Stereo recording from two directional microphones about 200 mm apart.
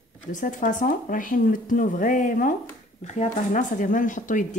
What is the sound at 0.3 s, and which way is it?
Speech, 40° left (ahead or behind).